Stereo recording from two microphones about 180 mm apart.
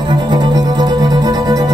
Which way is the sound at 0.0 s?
25° right (ahead or behind).